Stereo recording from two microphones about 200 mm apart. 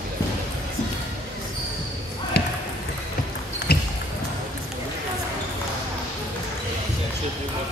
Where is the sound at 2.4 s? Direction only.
55° left (ahead or behind).